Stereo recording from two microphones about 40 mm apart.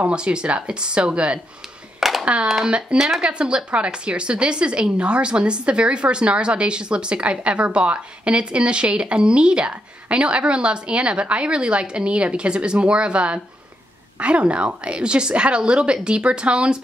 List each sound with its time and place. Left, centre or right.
0.1 s a woman's voice: right
2.0 s hands: centre
2.4 s speech: centre
3.2 s a woman's voice: right